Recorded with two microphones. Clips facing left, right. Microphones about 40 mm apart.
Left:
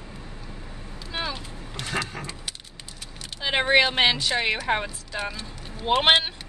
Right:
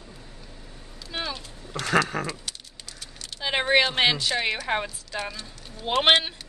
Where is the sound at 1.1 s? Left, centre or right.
Centre.